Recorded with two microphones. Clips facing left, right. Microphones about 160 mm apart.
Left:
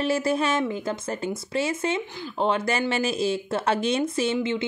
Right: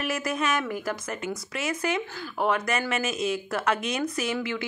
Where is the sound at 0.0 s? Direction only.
30° left (ahead or behind).